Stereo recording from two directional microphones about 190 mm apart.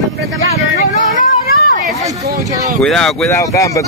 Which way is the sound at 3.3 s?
15° left (ahead or behind).